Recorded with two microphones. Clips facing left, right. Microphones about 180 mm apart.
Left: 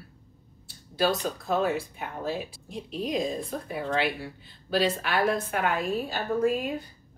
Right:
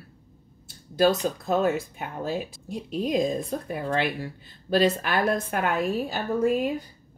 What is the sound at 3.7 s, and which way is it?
Speech, 50° right (ahead or behind).